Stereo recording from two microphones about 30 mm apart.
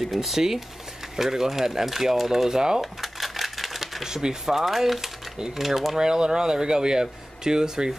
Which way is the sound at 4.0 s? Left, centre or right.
Centre.